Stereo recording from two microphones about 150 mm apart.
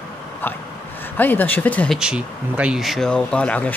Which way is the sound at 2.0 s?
5° right (ahead or behind).